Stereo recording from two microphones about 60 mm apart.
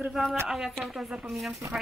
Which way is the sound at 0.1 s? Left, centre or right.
Centre.